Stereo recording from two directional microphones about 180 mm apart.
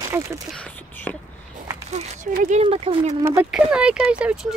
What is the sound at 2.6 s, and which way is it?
Speech, 30° right (ahead or behind).